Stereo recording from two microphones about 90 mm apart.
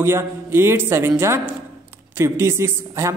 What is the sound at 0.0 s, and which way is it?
A woman's voice, 25° right (ahead or behind).